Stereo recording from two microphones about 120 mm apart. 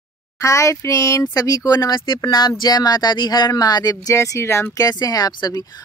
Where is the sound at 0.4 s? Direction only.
25° left (ahead or behind).